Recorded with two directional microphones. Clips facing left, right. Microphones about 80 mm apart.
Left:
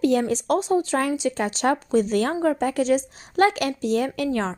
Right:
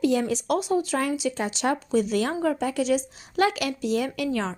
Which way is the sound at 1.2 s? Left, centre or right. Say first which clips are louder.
Left 3 dB; left.